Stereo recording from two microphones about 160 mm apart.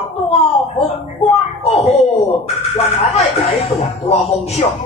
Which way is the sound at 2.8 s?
40° left (ahead or behind).